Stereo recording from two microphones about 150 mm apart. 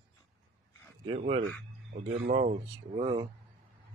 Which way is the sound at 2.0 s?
55° right (ahead or behind).